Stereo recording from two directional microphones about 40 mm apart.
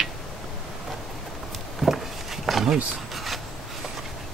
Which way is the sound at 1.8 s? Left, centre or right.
Centre.